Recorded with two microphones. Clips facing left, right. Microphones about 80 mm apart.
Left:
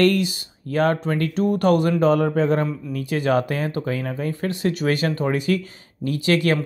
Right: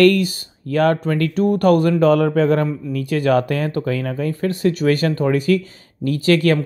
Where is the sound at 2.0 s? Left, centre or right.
Right.